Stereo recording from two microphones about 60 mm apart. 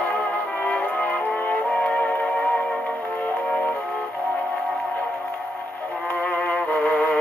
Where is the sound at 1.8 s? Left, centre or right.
Left.